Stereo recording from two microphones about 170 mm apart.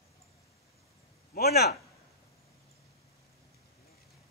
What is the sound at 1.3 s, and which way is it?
Speech, 70° left (ahead or behind).